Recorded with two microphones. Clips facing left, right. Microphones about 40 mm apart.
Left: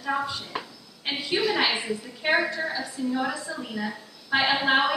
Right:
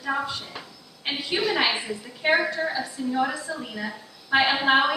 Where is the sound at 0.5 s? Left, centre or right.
Left.